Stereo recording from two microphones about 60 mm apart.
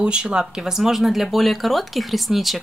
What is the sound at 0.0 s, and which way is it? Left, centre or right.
Speech, centre.